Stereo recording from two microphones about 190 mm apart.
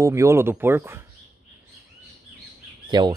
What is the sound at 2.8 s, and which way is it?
Speech, 25° right (ahead or behind).